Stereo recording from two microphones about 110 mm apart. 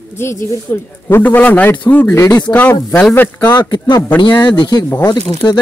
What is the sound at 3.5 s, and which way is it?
A man's voice, 40° left (ahead or behind).